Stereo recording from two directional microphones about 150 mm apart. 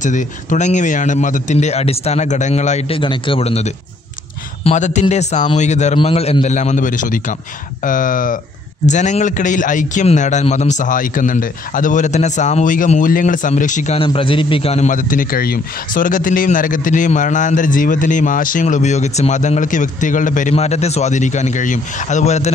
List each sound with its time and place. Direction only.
0.0 s a man's voice: 55° left (ahead or behind)
3.0 s a man's voice: 35° left (ahead or behind); by 8.4 s 65° left (ahead or behind)
8.8 s a man's voice: 55° left (ahead or behind)
13.9 s a man's voice: 35° left (ahead or behind); by 20.5 s 60° left (ahead or behind)
20.5 s a man's voice: 45° left (ahead or behind)